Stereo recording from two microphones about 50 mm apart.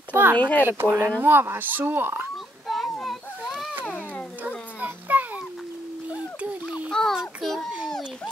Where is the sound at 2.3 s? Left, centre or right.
Centre.